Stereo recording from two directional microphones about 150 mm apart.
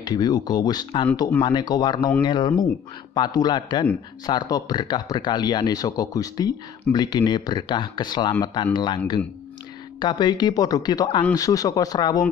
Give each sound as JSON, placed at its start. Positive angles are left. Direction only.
{"t": 0.0, "sound": "a man's voice", "side_deg": 25}